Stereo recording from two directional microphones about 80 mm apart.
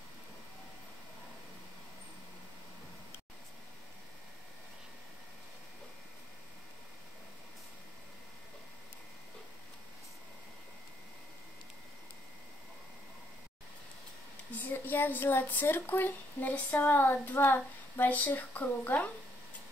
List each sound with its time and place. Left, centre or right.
14.6 s speech: left